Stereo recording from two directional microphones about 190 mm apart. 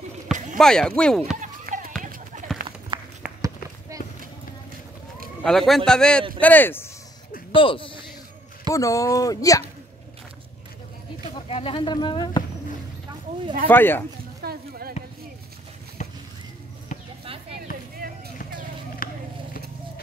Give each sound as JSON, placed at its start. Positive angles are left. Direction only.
{"t": 0.6, "sound": "speech", "side_deg": 5}
{"t": 1.4, "sound": "a sound", "side_deg": -45}
{"t": 2.0, "sound": "run", "side_deg": -45}
{"t": 5.4, "sound": "speech", "side_deg": 0}
{"t": 7.5, "sound": "a man's voice", "side_deg": 25}
{"t": 8.7, "sound": "speech", "side_deg": 15}
{"t": 11.4, "sound": "speech", "side_deg": 30}
{"t": 13.7, "sound": "speech", "side_deg": 10}
{"t": 14.4, "sound": "a sound", "side_deg": -55}
{"t": 16.0, "sound": "a sound", "side_deg": 40}
{"t": 17.2, "sound": "clip-clop", "side_deg": -30}
{"t": 18.0, "sound": "vehicle", "side_deg": -50}
{"t": 19.0, "sound": "vehicle", "side_deg": 45}